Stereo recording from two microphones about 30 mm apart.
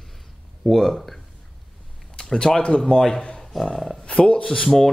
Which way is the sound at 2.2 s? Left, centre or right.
Left.